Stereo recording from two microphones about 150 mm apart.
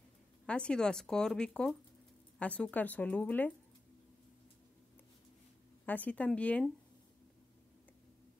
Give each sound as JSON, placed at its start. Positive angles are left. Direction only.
{"t": 0.5, "sound": "speech", "side_deg": 5}
{"t": 5.9, "sound": "speech", "side_deg": 10}